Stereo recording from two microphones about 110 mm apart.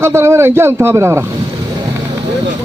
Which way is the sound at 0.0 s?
25° right (ahead or behind).